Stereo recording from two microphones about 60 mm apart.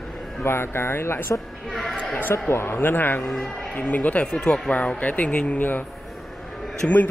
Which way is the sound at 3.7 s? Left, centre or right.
Left.